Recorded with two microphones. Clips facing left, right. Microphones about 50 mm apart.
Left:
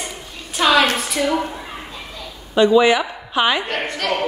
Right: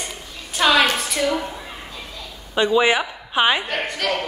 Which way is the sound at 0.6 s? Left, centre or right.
Centre.